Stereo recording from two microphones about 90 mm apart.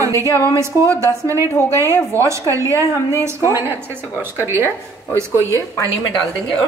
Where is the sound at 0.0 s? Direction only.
35° right (ahead or behind).